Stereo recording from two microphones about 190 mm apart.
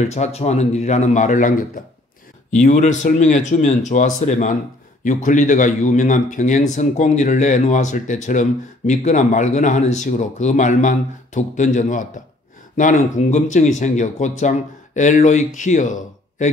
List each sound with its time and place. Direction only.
0.1 s speech: 35° left (ahead or behind)
2.6 s speech: 40° left (ahead or behind)